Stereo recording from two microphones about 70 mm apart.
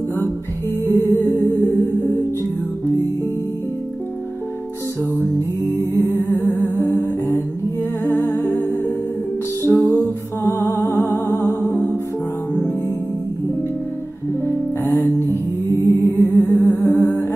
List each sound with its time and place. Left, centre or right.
0.9 s music: left
5.9 s humming: left
8.0 s humming: left
9.7 s music: left
10.4 s music: left
14.9 s music: left